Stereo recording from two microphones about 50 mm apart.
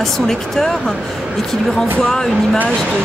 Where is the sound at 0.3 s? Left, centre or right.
Centre.